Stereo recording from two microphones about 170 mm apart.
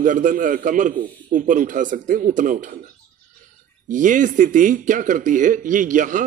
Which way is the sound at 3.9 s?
50° right (ahead or behind).